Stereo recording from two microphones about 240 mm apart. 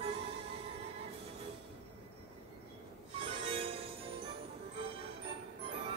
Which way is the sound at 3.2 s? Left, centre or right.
Right.